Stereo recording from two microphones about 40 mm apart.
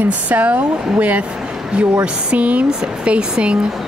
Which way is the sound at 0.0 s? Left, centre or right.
Right.